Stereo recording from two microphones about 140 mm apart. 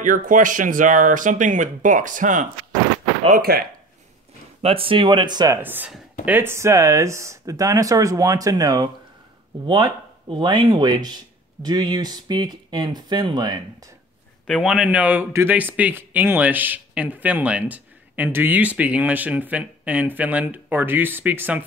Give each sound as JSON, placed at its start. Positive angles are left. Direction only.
{"t": 0.0, "sound": "speech", "side_deg": -70}
{"t": 3.3, "sound": "speech", "side_deg": -90}
{"t": 4.6, "sound": "speech", "side_deg": -40}
{"t": 5.6, "sound": "speech", "side_deg": -15}
{"t": 14.6, "sound": "speech", "side_deg": -5}